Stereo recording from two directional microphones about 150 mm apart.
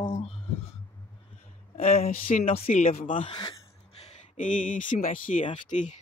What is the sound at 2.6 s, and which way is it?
Speech, 50° left (ahead or behind).